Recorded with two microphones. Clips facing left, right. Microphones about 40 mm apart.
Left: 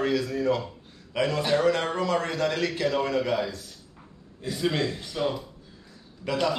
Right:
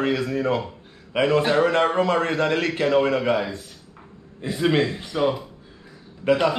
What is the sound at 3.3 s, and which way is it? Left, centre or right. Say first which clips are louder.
Speech: right 4 dB; centre.